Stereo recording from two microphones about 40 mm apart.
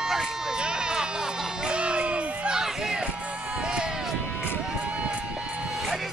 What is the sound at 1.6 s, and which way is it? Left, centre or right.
Crowd, right.